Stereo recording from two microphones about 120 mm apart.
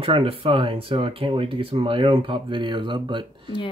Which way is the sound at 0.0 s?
50° right (ahead or behind).